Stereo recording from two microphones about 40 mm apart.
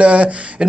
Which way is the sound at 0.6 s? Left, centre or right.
Centre.